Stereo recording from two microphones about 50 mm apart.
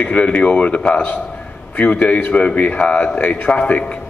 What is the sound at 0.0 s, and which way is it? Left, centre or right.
A man's voice, left.